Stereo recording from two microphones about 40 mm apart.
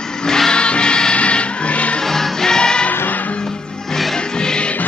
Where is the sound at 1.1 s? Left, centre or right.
Left.